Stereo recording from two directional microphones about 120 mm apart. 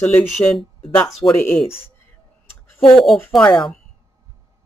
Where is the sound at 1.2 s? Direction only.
30° left (ahead or behind).